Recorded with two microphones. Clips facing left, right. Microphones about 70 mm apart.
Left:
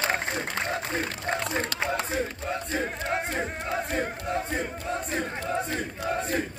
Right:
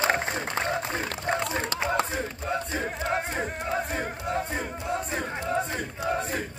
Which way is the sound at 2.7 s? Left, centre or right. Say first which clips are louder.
Even; centre.